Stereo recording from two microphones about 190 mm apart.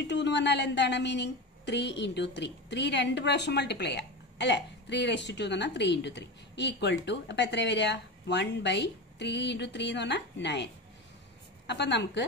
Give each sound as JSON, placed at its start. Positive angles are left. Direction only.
{"t": 0.0, "sound": "a woman's voice", "side_deg": 65}